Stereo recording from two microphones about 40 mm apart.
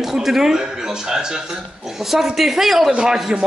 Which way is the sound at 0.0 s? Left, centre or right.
Centre.